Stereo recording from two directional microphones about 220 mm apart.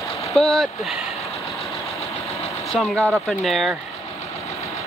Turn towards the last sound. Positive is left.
turn(degrees=0)  # may be behind; listen again after turning